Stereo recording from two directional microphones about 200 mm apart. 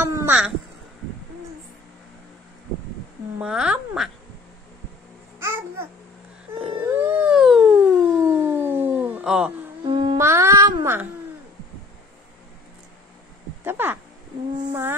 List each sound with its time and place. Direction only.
0.0 s a sound: 10° right (ahead or behind)
3.3 s a woman's voice: 5° right (ahead or behind)
6.6 s dog: 10° right (ahead or behind)
8.1 s a sound: 10° right (ahead or behind)
9.8 s music: 25° right (ahead or behind)
10.2 s speech: 15° right (ahead or behind)
13.7 s speech: 10° right (ahead or behind)